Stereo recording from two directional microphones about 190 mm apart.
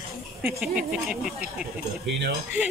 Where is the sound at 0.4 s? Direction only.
5° right (ahead or behind).